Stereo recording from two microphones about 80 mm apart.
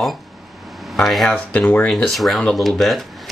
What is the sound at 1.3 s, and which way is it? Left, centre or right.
Speech, centre.